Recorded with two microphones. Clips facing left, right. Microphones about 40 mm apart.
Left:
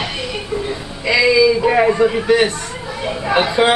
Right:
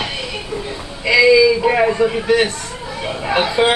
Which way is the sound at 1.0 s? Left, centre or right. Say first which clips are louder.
Right 2 dB; centre.